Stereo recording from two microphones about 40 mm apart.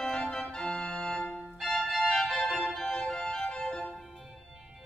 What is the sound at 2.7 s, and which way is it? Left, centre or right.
Organ, centre.